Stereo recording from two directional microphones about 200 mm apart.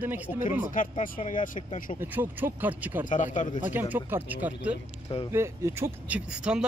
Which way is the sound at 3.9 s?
10° right (ahead or behind).